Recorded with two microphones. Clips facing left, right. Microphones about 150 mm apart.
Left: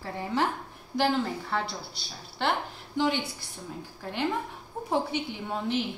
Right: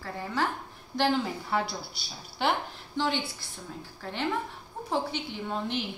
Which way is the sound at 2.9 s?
15° left (ahead or behind).